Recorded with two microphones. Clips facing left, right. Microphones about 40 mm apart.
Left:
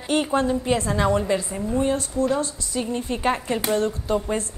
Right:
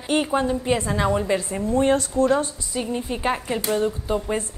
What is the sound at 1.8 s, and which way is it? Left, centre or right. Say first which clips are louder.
Speech: right 4 dB; right.